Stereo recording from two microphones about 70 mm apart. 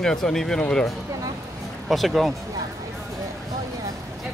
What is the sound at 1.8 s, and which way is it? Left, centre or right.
Speech, centre.